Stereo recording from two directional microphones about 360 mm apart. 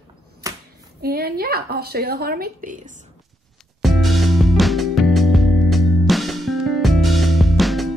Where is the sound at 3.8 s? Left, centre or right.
Centre.